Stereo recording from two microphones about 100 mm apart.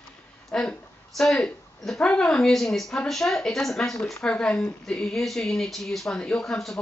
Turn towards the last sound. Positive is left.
turn(degrees=5)  # may be behind; listen again after turning